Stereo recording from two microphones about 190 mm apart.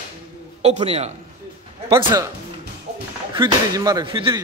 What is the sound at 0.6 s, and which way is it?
Speech, 30° right (ahead or behind).